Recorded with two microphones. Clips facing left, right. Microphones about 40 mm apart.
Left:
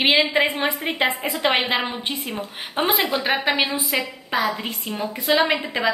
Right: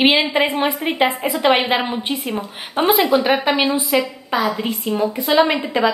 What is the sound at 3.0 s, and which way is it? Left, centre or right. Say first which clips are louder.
Speech: right 7 dB; right.